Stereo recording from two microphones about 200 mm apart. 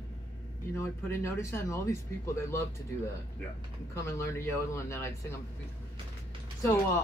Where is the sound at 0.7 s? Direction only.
15° left (ahead or behind).